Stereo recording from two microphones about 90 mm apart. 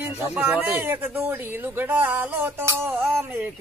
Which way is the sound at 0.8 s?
25° right (ahead or behind).